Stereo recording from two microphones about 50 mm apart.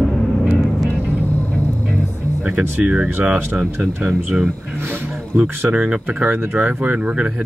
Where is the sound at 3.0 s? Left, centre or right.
Right.